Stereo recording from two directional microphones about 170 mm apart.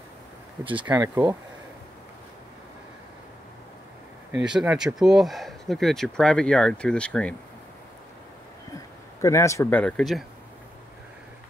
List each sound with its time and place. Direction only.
0.8 s speech: 15° right (ahead or behind)
4.3 s speech: 5° right (ahead or behind)
8.7 s speech: 15° left (ahead or behind); by 10.2 s centre (ahead or behind)